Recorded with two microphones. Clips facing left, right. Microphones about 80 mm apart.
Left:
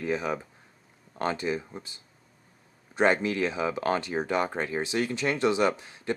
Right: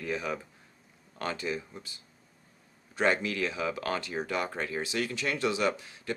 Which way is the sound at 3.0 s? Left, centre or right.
Left.